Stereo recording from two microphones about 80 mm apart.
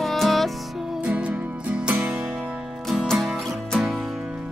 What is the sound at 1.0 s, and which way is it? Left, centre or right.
Music, centre.